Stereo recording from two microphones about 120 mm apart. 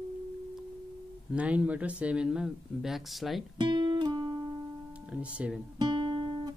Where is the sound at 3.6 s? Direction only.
40° right (ahead or behind).